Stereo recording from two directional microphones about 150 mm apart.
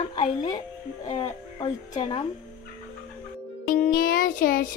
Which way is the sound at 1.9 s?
35° left (ahead or behind).